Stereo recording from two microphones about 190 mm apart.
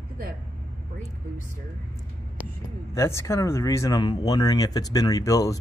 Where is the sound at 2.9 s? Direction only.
15° left (ahead or behind).